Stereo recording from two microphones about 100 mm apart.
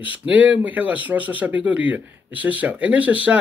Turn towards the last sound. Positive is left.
turn(degrees=-15)  # may be behind; listen again after turning